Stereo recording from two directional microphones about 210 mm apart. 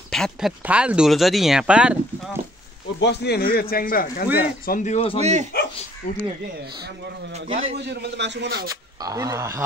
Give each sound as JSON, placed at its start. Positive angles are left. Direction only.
{"t": 0.1, "sound": "speech", "side_deg": 0}
{"t": 3.0, "sound": "a man's voice", "side_deg": 55}
{"t": 5.2, "sound": "speech", "side_deg": -35}
{"t": 7.3, "sound": "a man's voice", "side_deg": -25}
{"t": 7.7, "sound": "a man's voice", "side_deg": -50}
{"t": 8.6, "sound": "speech", "side_deg": -15}